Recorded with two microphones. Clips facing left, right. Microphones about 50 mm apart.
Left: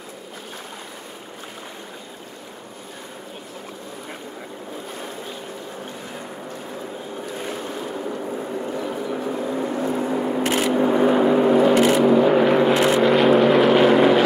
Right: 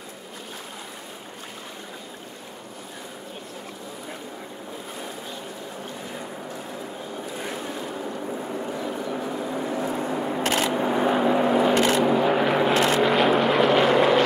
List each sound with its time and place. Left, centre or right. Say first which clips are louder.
7.8 s vehicle: left 3 dB; centre
11.7 s vehicle: left 4 dB; centre
12.0 s vehicle: left 5 dB; centre